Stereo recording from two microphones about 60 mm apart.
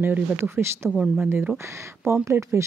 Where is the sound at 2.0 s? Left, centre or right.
Right.